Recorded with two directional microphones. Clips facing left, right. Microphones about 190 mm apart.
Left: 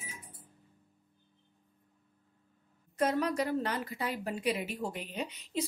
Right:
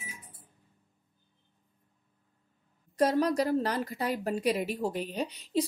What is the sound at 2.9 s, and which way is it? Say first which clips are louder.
A woman's voice: right 4 dB; 35° right (ahead or behind).